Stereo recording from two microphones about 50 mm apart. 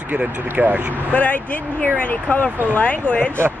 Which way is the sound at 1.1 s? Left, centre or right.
Left.